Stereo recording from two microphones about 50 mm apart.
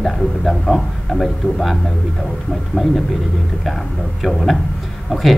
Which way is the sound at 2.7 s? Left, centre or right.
Left.